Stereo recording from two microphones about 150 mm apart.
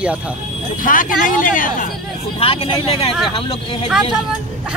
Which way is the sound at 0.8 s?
65° left (ahead or behind).